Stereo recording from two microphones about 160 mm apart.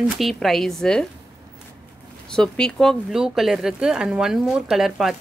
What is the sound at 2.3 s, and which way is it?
Speech, 5° left (ahead or behind).